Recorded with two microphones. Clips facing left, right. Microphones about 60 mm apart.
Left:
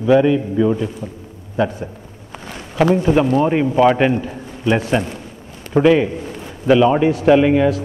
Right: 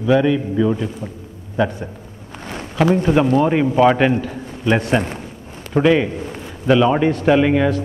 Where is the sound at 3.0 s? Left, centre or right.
Centre.